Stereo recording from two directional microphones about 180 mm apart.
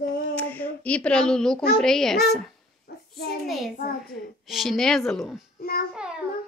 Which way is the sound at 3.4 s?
Centre (ahead or behind).